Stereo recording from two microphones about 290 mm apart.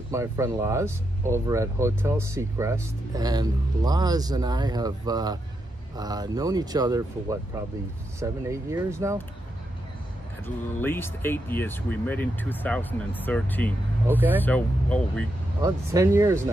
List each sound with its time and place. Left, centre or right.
0.1 s speech: centre
10.4 s speech: centre
15.6 s speech: centre